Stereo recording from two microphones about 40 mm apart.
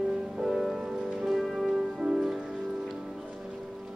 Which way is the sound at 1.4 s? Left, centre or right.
Centre.